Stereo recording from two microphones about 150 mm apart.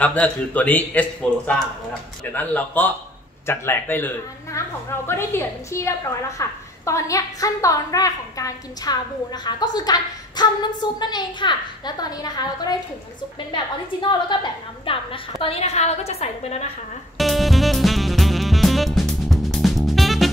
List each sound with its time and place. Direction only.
0.0 s speech: 10° left (ahead or behind)
2.3 s a woman's voice: 10° left (ahead or behind); by 12.7 s 25° left (ahead or behind)
14.9 s a woman's voice: 35° left (ahead or behind)
17.2 s music: centre (ahead or behind)